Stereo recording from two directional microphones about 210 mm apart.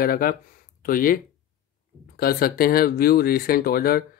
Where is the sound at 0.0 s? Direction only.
45° left (ahead or behind).